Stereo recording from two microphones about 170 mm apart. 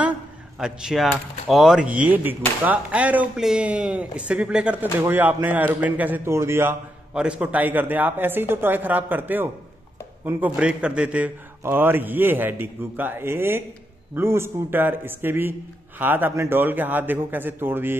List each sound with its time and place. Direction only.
0.6 s a man's voice: 5° right (ahead or behind)